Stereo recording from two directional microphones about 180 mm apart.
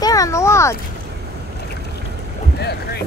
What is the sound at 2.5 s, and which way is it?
Boat, 65° left (ahead or behind).